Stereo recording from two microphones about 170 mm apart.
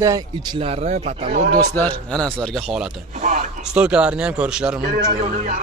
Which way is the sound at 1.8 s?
5° left (ahead or behind).